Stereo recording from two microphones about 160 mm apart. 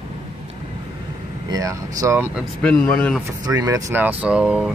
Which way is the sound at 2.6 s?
5° left (ahead or behind).